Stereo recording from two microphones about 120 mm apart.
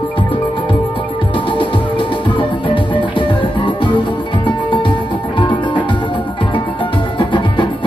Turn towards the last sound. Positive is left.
turn(degrees=40)  # may be behind; listen again after turning